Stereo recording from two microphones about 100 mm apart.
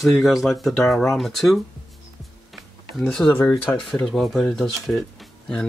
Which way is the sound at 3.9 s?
Centre (ahead or behind).